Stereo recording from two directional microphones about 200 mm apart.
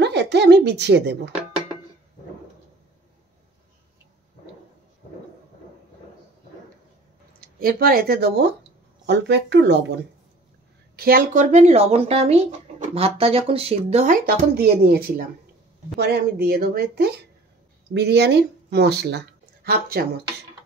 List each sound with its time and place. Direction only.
0.0 s a woman's voice: 60° right (ahead or behind)
7.3 s a woman's voice: 45° right (ahead or behind)
11.0 s speech: 45° right (ahead or behind)
14.2 s a woman's voice: 50° right (ahead or behind)